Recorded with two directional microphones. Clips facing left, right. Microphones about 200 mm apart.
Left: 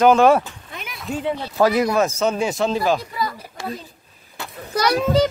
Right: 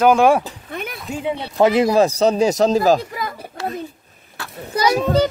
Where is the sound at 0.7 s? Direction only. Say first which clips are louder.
Right 7 dB; 55° right (ahead or behind).